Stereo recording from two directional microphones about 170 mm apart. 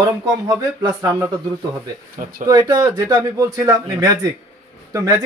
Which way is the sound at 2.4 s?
20° right (ahead or behind).